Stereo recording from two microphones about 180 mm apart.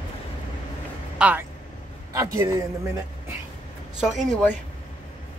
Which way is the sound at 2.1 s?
15° right (ahead or behind).